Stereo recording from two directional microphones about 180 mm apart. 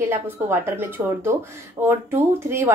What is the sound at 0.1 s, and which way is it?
A woman's voice, 15° right (ahead or behind).